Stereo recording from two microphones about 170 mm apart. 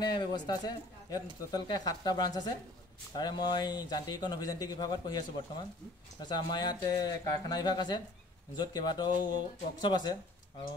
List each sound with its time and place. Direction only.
0.0 s speech: 25° left (ahead or behind)
6.2 s speech: 25° left (ahead or behind)